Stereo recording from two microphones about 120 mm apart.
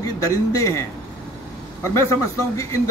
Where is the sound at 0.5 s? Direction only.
25° left (ahead or behind).